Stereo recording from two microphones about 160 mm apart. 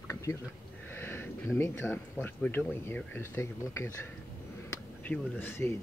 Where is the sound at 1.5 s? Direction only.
10° left (ahead or behind).